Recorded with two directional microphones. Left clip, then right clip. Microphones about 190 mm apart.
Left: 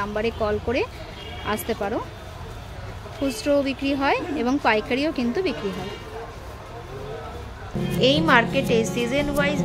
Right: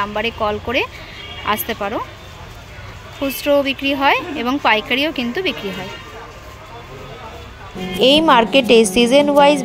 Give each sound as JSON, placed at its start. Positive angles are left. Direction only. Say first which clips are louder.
{"t": 0.0, "sound": "speech", "louder": "right 5 dB", "side_deg": 0}
{"t": 3.3, "sound": "speech", "louder": "right 6 dB", "side_deg": 0}
{"t": 8.0, "sound": "a woman's voice", "louder": "right 7 dB", "side_deg": -30}